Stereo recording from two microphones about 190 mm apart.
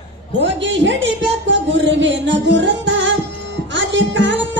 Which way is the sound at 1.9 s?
70° right (ahead or behind).